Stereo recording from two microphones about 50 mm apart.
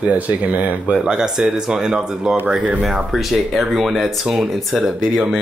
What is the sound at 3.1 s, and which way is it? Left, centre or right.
Speech, centre.